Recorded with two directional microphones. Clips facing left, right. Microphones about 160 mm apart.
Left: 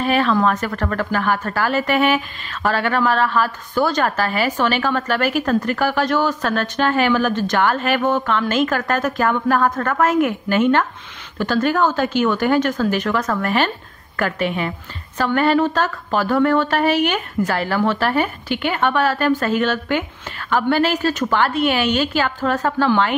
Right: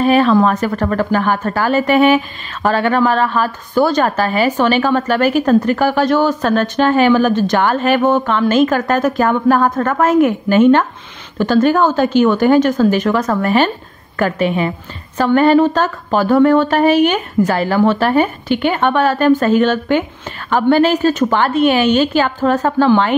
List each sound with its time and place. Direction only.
0.0 s a woman's voice: 15° right (ahead or behind)